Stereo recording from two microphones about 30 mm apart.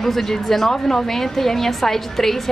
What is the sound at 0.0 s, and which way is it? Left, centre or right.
A woman's voice, centre.